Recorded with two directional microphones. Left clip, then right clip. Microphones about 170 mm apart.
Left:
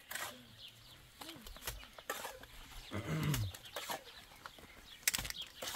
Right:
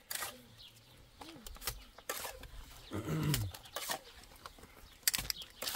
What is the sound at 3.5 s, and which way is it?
Bird, 35° right (ahead or behind).